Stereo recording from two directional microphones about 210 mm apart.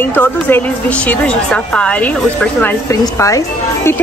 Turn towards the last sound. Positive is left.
turn(degrees=15)  # may be behind; listen again after turning